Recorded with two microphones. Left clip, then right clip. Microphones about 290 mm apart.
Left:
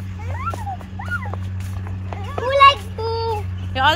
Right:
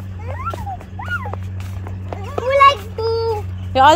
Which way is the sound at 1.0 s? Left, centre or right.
Right.